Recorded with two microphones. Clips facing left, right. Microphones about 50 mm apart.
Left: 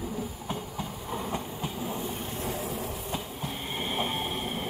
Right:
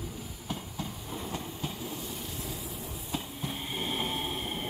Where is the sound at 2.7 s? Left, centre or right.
Left.